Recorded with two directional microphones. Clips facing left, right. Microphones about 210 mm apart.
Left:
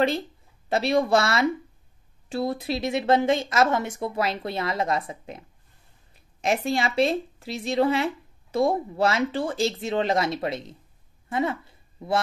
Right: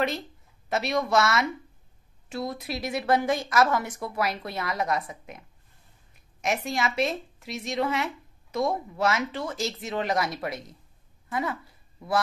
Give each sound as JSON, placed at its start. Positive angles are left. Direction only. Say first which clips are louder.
{"t": 0.7, "sound": "speech", "louder": "left 5 dB", "side_deg": 30}
{"t": 6.4, "sound": "speech", "louder": "left 4 dB", "side_deg": 30}
{"t": 11.2, "sound": "a sound", "louder": "left 4 dB", "side_deg": 25}